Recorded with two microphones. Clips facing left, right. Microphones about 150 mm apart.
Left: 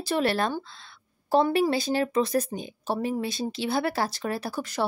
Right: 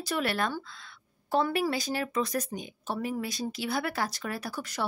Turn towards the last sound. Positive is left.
turn(degrees=30)  # may be behind; listen again after turning